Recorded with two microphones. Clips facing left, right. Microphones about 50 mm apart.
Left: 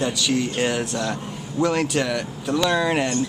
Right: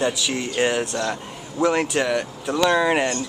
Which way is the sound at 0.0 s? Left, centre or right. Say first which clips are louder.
Left 1 dB; centre.